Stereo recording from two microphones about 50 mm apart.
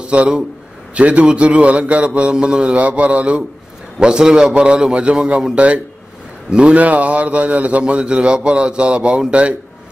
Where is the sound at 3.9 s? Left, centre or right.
Centre.